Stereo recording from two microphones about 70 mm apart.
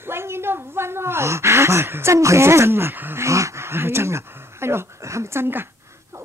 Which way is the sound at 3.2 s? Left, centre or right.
Right.